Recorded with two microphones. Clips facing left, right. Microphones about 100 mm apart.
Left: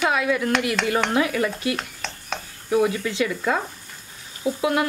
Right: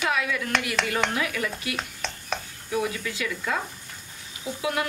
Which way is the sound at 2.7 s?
45° left (ahead or behind).